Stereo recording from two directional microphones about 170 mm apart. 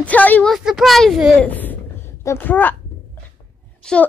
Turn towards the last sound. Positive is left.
turn(degrees=5)  # may be behind; listen again after turning